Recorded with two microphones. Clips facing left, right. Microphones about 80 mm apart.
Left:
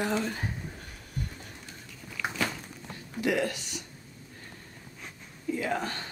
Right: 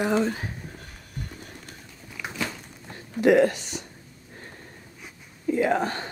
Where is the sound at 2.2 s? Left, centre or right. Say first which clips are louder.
Left 2 dB; centre.